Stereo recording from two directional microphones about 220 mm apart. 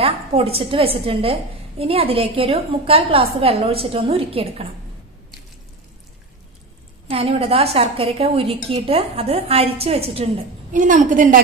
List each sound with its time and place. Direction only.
0.0 s speech: 25° right (ahead or behind)
7.1 s speech: 25° right (ahead or behind)